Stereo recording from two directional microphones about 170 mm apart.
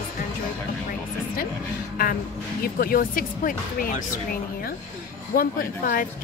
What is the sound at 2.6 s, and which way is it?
Speech, 60° left (ahead or behind).